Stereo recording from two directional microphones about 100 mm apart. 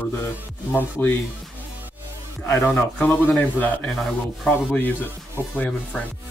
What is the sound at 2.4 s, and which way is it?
A man's voice, 20° left (ahead or behind).